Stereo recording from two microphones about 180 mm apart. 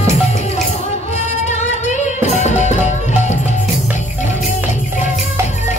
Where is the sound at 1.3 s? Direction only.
40° left (ahead or behind).